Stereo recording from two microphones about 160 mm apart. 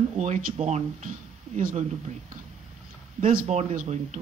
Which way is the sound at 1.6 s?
60° right (ahead or behind).